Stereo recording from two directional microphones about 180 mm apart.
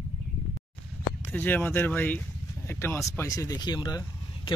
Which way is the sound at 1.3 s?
10° left (ahead or behind).